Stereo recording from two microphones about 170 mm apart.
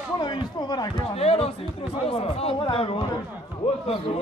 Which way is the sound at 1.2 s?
35° left (ahead or behind).